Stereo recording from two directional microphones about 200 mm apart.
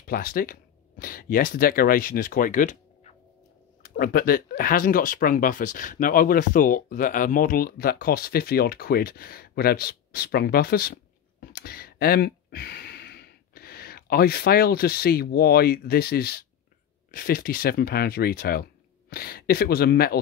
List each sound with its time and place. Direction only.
0.0 s speech: 45° left (ahead or behind)